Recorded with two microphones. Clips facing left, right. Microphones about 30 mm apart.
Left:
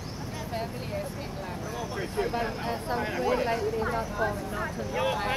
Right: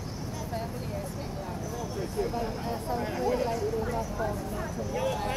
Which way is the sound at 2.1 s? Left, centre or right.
Left.